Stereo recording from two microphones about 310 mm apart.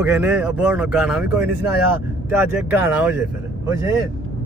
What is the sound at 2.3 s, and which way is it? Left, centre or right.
Speech, centre.